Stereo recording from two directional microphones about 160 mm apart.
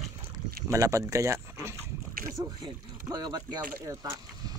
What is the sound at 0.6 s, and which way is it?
Speech, 20° right (ahead or behind).